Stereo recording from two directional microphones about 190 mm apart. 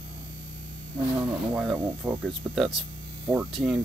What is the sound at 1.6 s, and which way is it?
Speech, 5° right (ahead or behind).